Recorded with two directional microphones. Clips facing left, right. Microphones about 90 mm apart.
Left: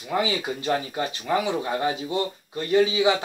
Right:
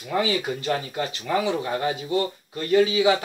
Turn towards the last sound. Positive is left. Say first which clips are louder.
# right 1 dB
turn(degrees=20)  # may be behind; listen again after turning